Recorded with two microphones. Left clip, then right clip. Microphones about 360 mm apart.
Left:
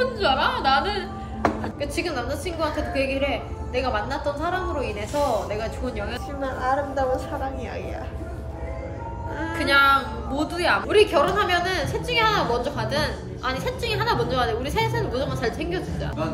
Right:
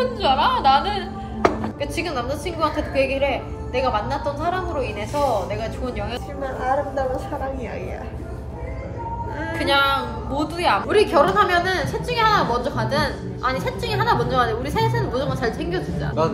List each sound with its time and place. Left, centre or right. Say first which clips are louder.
0.0 s a woman's voice: right 3 dB; centre
6.4 s a woman's voice: right 2 dB; centre
9.6 s a woman's voice: left 1 dB; centre